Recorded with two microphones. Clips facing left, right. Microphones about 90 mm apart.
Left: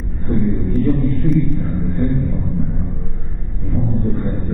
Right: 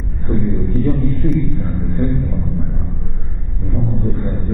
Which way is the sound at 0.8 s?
Centre (ahead or behind).